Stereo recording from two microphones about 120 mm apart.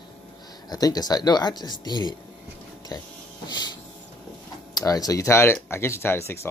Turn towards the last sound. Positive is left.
turn(degrees=20)  # may be behind; listen again after turning